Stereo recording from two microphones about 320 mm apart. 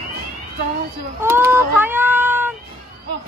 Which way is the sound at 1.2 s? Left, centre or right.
Centre.